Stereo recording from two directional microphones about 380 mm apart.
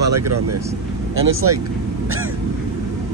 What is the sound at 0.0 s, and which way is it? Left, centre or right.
Speech, right.